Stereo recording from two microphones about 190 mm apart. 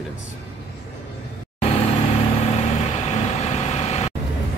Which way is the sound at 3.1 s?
35° left (ahead or behind).